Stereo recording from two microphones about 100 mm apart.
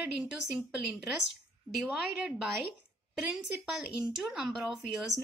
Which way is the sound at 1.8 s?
5° right (ahead or behind).